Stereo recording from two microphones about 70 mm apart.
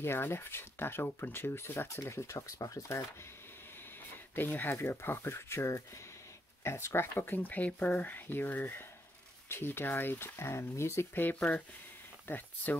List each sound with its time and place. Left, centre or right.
0.0 s speech: left
4.4 s speech: left
11.3 s speech: centre